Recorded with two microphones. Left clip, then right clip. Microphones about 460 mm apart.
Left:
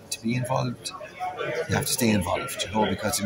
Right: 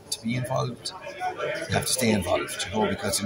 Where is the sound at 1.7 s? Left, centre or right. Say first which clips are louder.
Right 2 dB; left.